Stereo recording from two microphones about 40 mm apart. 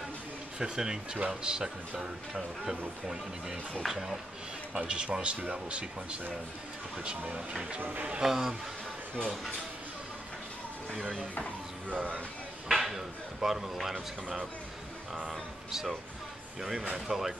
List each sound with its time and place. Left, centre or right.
0.6 s a man's voice: centre
3.8 s speech: centre
4.7 s a man's voice: right
7.0 s a man's voice: right
7.8 s speech: right
8.2 s speech: centre
12.6 s speech: centre
15.7 s speech: centre